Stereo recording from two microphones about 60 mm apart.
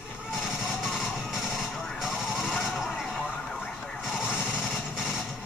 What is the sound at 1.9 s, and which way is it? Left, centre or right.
Vehicle, centre.